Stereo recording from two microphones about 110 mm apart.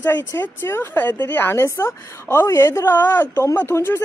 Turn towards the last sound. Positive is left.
turn(degrees=20)  # may be behind; listen again after turning